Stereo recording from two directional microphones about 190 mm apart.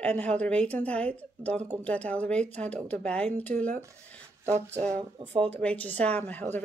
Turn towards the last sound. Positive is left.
turn(degrees=10)  # may be behind; listen again after turning